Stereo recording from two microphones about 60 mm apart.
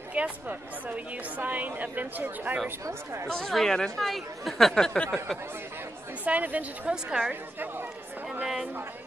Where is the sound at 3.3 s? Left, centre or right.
Centre.